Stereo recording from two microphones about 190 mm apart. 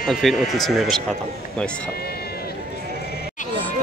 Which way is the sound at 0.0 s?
Centre (ahead or behind).